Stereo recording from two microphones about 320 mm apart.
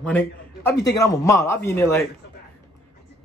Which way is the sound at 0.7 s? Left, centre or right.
Left.